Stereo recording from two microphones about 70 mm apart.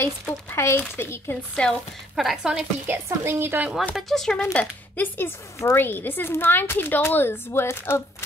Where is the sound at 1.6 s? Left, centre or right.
Centre.